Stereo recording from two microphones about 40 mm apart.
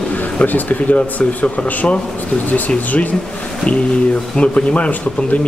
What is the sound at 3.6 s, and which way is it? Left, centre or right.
Speech, left.